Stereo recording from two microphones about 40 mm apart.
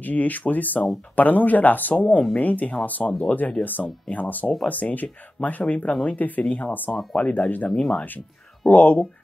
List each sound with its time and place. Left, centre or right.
0.0 s speech: left
3.6 s speech: left
7.2 s speech: left